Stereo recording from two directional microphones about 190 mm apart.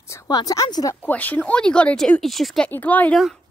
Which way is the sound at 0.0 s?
15° left (ahead or behind).